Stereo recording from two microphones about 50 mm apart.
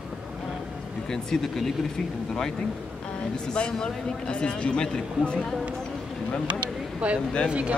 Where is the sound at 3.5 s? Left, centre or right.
Centre.